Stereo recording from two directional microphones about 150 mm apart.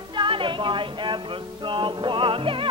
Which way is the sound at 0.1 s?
35° right (ahead or behind).